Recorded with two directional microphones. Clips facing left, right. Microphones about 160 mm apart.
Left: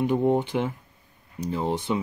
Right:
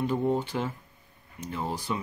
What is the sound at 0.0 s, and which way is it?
Speech, 20° left (ahead or behind).